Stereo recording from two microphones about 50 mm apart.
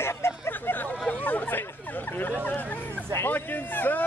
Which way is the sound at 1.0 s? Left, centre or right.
Left.